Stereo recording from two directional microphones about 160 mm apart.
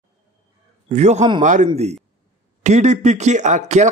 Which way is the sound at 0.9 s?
45° right (ahead or behind).